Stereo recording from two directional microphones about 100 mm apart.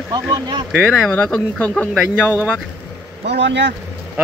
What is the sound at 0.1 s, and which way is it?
Speech, 45° right (ahead or behind).